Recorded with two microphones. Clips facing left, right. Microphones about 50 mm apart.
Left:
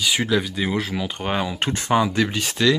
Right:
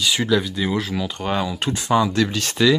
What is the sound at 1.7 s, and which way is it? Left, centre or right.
Speech, left.